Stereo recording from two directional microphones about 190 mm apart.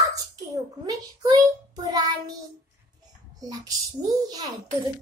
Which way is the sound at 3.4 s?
20° right (ahead or behind).